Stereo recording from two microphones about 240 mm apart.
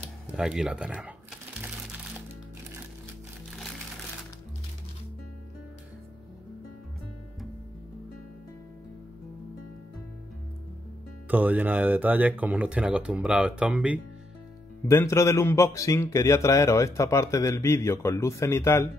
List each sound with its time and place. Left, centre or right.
0.4 s speech: centre
11.2 s speech: centre
14.9 s a man's voice: centre